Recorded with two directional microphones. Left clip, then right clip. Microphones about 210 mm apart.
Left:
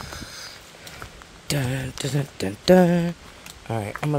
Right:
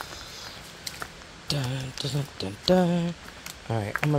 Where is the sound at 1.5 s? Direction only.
35° left (ahead or behind).